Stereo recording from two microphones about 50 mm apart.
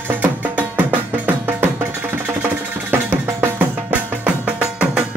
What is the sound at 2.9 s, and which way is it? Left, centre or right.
Percussion, right.